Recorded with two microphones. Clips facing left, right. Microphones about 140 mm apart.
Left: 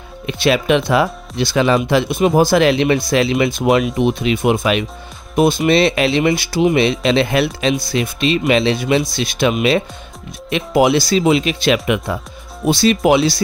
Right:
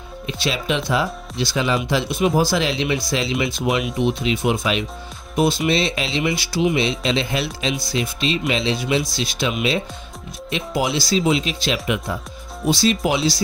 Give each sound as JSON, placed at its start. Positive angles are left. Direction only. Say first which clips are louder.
{"t": 0.3, "sound": "speech", "louder": "left 9 dB", "side_deg": 60}